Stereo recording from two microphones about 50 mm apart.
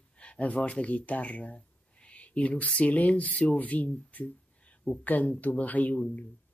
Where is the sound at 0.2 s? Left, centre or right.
Left.